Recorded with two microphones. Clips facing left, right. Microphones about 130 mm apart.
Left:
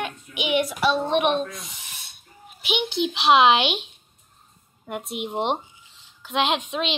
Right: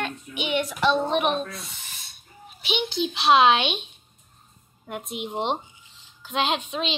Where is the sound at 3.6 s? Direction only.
80° left.